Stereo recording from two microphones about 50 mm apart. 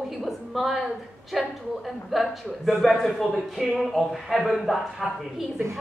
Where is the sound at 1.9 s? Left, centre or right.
Centre.